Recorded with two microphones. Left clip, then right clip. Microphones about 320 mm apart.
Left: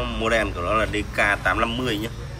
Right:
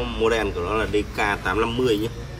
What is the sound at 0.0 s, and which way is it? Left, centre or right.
Speech, centre.